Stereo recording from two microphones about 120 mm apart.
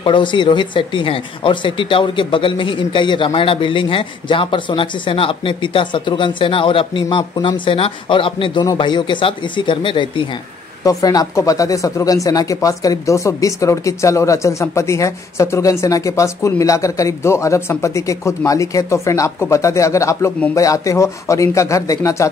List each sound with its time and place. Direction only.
0.0 s speech: 40° left (ahead or behind)
10.8 s speech: 30° left (ahead or behind)